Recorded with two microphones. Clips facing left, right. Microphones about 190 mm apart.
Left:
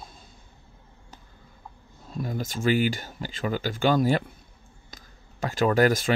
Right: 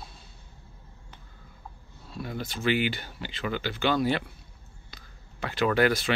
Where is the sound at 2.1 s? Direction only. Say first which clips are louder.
Left 4 dB; 40° left (ahead or behind).